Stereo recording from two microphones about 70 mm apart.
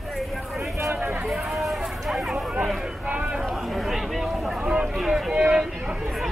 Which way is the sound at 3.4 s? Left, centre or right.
Centre.